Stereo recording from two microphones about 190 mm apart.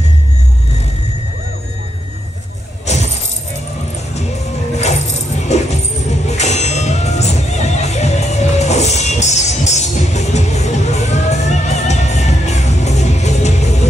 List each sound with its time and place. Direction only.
2.9 s music: 35° left (ahead or behind)
4.7 s music: 35° left (ahead or behind)